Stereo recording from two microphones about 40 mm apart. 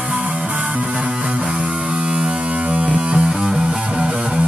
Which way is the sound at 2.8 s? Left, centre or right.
Right.